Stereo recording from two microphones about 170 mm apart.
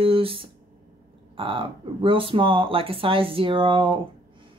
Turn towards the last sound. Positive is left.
turn(degrees=-30)  # may be behind; listen again after turning